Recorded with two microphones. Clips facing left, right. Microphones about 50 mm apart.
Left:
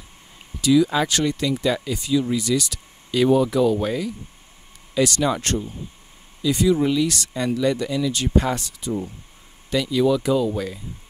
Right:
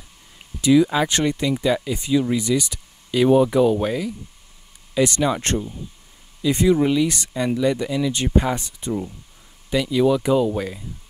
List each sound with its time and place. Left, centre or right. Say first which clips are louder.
0.6 s speech: right 1 dB; right
3.7 s speech: right 1 dB; centre
5.0 s speech: right 1 dB; right
6.4 s speech: right 1 dB; right
6.8 s speech: right 1 dB; centre